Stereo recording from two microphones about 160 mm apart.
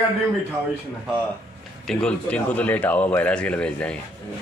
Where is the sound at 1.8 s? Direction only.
5° left (ahead or behind).